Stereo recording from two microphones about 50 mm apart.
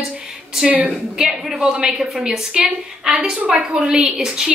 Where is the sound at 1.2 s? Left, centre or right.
Centre.